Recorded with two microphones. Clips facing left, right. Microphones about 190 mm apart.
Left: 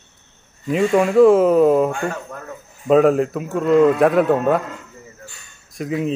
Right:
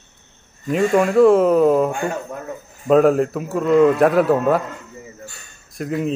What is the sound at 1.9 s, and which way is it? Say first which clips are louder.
Speech: right 1 dB; 20° right (ahead or behind).